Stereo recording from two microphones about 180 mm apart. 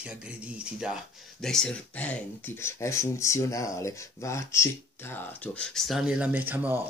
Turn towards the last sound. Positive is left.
turn(degrees=-10)  # may be behind; listen again after turning